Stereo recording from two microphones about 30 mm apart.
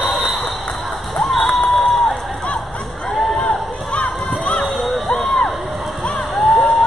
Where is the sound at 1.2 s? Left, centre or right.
Centre.